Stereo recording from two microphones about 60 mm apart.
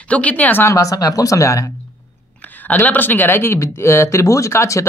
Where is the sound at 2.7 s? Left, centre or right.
Left.